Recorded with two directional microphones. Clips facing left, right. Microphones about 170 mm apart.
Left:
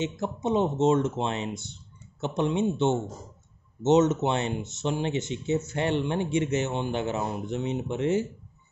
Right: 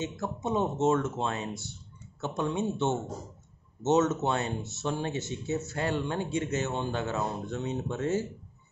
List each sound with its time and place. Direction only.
0.0 s speech: 20° left (ahead or behind)